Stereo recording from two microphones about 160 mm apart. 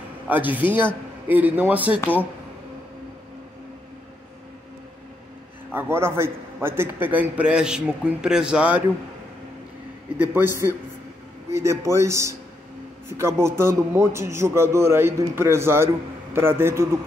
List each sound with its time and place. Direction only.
0.3 s a man's voice: 10° right (ahead or behind)
5.7 s a man's voice: 15° right (ahead or behind)
10.1 s a man's voice: 10° right (ahead or behind)